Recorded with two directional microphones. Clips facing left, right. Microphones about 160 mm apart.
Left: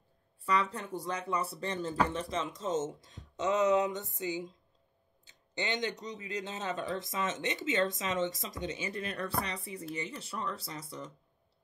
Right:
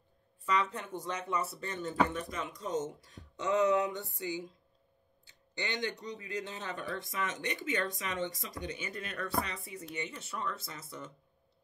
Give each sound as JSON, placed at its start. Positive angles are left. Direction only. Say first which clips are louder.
{"t": 0.6, "sound": "speech", "louder": "left 1 dB", "side_deg": 35}